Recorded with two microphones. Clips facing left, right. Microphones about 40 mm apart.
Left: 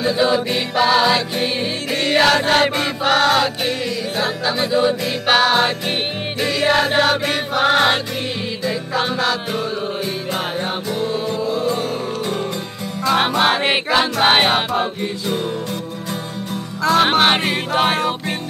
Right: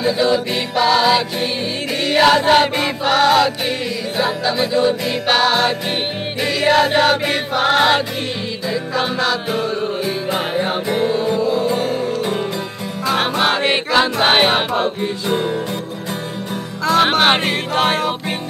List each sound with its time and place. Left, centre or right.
0.0 s music: centre
11.3 s music: centre
15.0 s music: centre
16.8 s music: centre